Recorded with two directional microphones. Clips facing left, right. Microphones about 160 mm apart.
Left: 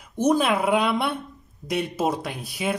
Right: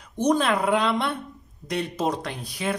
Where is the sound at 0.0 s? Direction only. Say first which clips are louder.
Left 1 dB; 5° left (ahead or behind).